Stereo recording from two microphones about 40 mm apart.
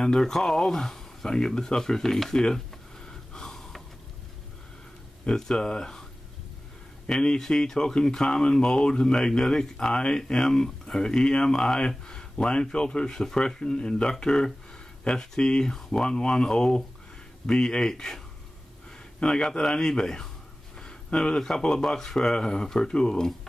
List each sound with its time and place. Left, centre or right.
0.0 s speech: centre
2.3 s speech: left
3.1 s gasp: centre
5.3 s speech: centre
7.1 s speech: centre
20.8 s a sound: left
21.4 s speech: centre